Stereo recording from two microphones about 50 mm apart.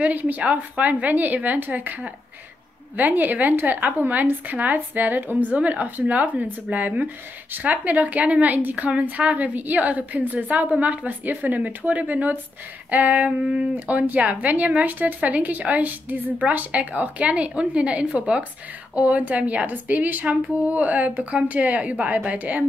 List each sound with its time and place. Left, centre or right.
0.0 s a woman's voice: right
13.5 s a woman's voice: centre
13.8 s a woman's voice: right